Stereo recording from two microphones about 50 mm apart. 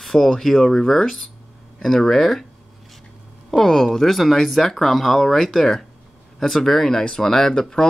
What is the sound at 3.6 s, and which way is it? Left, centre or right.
Speech, centre.